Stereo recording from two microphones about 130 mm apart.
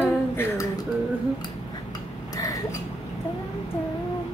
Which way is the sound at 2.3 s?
30° left (ahead or behind).